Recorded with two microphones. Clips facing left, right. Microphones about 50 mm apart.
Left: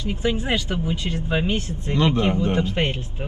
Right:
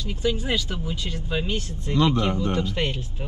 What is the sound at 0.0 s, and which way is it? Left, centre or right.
Speech, left.